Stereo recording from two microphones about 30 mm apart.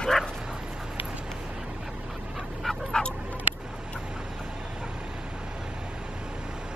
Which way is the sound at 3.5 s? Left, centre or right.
Right.